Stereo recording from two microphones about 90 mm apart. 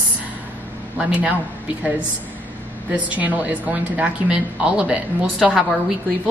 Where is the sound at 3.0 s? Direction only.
15° right (ahead or behind).